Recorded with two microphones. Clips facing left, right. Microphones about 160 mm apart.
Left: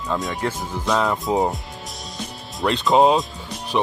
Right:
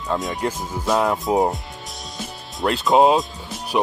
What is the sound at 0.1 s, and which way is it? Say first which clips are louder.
Speech: right 1 dB; centre (ahead or behind).